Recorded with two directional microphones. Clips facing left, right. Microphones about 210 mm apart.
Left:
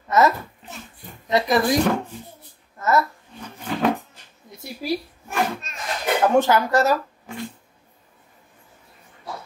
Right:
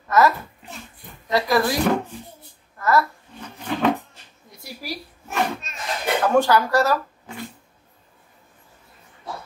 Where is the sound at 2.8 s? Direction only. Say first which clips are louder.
Even; 20° left (ahead or behind).